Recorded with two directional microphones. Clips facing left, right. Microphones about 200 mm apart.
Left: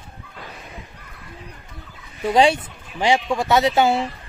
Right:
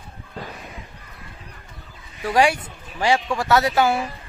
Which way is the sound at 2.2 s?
20° left (ahead or behind).